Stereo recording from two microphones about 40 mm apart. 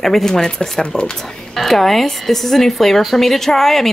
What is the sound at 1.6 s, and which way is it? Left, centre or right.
Speech, centre.